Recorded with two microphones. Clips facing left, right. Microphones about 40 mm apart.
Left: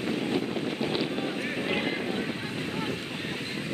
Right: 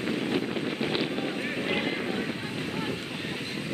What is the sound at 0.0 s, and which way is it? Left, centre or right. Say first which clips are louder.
Wind noise: even; centre.